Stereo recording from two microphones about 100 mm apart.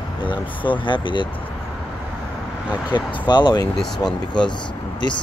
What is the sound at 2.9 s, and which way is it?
Speech, 50° left (ahead or behind).